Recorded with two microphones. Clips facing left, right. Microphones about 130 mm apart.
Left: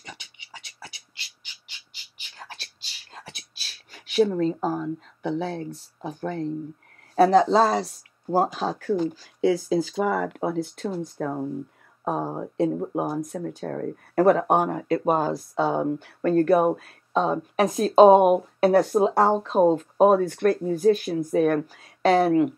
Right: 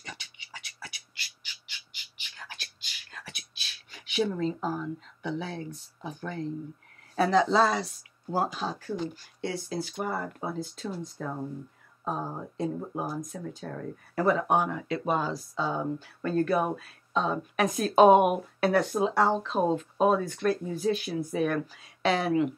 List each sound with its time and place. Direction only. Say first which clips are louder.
0.0 s squawk: left 1 dB; 20° left (ahead or behind); by 6.5 s 40° left (ahead or behind)
7.2 s speech: left 6 dB; 40° left (ahead or behind); by 9.0 s 65° left (ahead or behind)
10.0 s speech: left 8 dB; 90° left; by 11.4 s 60° left (ahead or behind)
12.0 s speech: left 6 dB; 70° left (ahead or behind)
20.6 s speech: left 8 dB; 45° left (ahead or behind)